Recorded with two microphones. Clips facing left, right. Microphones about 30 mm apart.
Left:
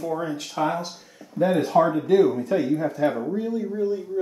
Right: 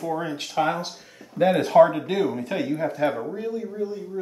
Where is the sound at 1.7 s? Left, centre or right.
Right.